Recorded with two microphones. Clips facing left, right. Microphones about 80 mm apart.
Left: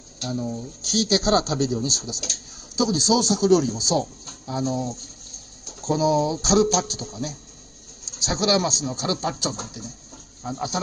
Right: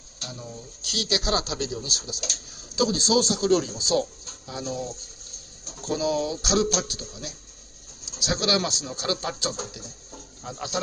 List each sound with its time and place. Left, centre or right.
0.3 s speech: left